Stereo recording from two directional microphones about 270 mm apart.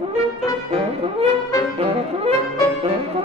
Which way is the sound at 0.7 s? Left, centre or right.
Right.